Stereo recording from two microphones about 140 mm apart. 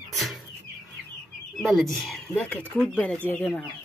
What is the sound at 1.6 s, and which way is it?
Speech, centre (ahead or behind).